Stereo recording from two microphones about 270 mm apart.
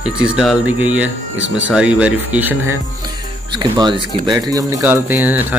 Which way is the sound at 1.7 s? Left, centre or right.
Centre.